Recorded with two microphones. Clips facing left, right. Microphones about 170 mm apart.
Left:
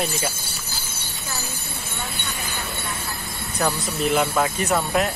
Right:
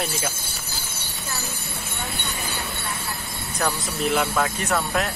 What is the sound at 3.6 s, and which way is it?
Speech, centre (ahead or behind).